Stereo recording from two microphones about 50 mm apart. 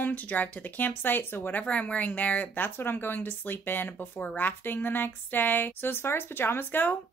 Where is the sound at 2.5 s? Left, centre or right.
Left.